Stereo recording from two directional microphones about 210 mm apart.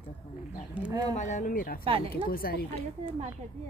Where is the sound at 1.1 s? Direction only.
35° left (ahead or behind).